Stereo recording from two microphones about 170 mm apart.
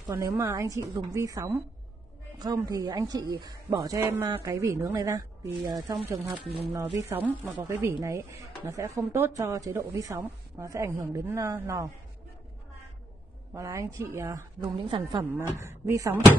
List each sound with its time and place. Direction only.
0.0 s speech: 20° right (ahead or behind)
6.0 s a woman's voice: 10° right (ahead or behind)
13.5 s speech: 15° right (ahead or behind)
15.3 s a woman's voice: 15° right (ahead or behind)